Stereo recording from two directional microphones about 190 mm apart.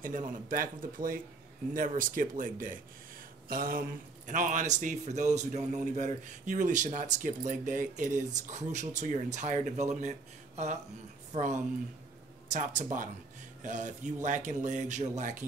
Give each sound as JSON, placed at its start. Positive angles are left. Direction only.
{"t": 0.0, "sound": "a man's voice", "side_deg": -45}